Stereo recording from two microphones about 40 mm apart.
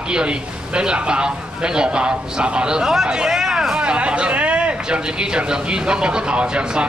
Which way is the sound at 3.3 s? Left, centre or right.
Centre.